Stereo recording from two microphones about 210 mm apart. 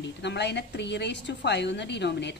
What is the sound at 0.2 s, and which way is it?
A woman's voice, 55° left (ahead or behind).